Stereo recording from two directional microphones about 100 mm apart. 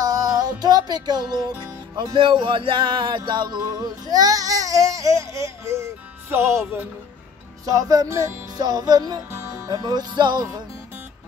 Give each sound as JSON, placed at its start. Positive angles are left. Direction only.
{"t": 0.0, "sound": "music", "side_deg": -40}
{"t": 6.3, "sound": "speech", "side_deg": -25}
{"t": 7.6, "sound": "music", "side_deg": -35}
{"t": 8.5, "sound": "music", "side_deg": -40}